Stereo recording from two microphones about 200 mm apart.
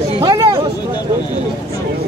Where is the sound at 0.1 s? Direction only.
25° right (ahead or behind).